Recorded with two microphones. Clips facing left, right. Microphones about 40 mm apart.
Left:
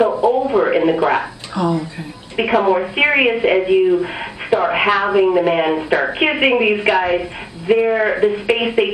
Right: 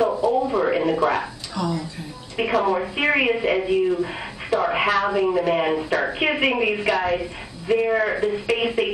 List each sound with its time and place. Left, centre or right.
0.0 s a woman's voice: left